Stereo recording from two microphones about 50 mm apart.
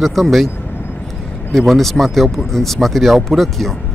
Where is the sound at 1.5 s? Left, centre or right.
Centre.